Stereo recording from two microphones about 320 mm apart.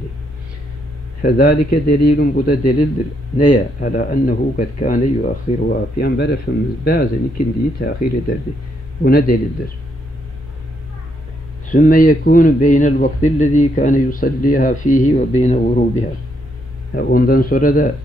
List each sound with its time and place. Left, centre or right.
1.2 s speech: left
9.0 s speech: left
11.7 s speech: left
16.9 s speech: left